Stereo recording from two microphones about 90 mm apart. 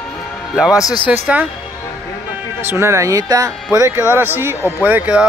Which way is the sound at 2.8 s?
35° right (ahead or behind).